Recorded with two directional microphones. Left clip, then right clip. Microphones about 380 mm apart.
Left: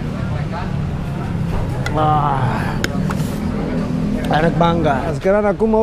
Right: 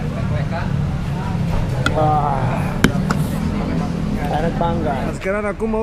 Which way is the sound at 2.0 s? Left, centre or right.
Left.